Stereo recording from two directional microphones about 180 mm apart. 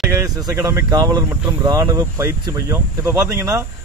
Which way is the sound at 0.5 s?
15° right (ahead or behind).